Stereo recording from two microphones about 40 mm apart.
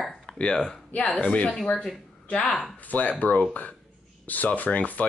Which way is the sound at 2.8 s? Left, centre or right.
Left.